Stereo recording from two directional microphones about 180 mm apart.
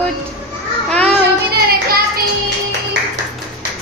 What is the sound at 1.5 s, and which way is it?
Child singing, 55° right (ahead or behind).